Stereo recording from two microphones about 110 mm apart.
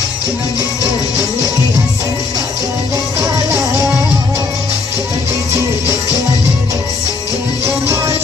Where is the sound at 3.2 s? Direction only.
30° right (ahead or behind).